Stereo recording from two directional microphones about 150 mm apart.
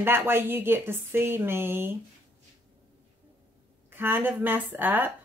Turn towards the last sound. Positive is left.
turn(degrees=-10)  # may be behind; listen again after turning